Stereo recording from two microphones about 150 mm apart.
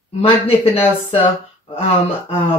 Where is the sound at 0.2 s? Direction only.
40° left (ahead or behind).